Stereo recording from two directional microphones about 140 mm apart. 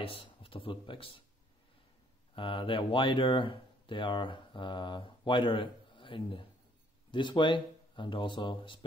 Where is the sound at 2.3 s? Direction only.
40° left (ahead or behind).